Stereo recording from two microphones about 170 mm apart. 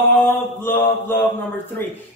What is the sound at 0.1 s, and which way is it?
Speech, 10° left (ahead or behind).